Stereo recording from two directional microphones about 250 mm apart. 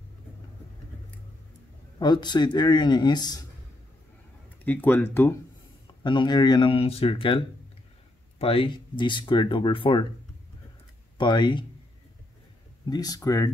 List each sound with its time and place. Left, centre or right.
2.0 s speech: centre
4.6 s speech: centre
11.1 s speech: centre
12.9 s speech: centre